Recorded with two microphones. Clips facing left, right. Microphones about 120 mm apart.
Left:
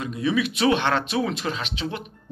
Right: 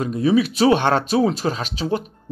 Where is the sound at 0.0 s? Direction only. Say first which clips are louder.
Right 6 dB; 40° right (ahead or behind).